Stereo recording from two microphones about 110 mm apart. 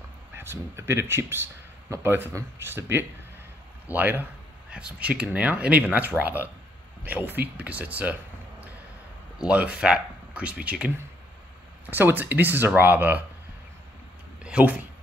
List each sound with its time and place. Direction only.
0.3 s speech: 20° right (ahead or behind)
14.4 s speech: 15° right (ahead or behind)